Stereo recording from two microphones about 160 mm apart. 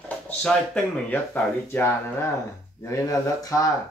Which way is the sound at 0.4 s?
10° left (ahead or behind).